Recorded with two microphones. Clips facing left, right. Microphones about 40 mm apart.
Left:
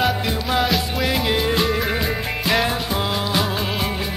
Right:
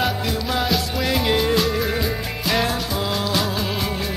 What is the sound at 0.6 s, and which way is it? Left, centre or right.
Music, centre.